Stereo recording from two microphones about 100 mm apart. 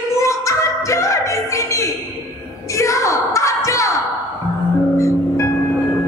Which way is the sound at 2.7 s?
30° left (ahead or behind).